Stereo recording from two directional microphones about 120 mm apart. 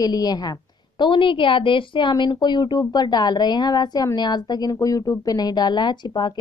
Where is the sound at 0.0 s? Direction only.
35° left (ahead or behind).